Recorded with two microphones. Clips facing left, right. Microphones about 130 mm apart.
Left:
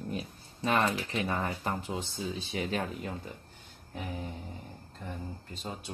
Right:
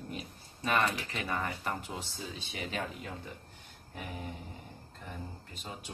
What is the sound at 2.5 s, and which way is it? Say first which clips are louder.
Speech: left 4 dB; 40° left (ahead or behind).